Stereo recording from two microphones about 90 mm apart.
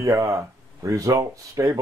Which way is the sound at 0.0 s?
35° right (ahead or behind).